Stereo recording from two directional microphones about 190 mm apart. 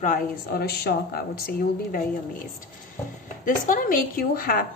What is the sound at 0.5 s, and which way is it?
Speech, 55° left (ahead or behind).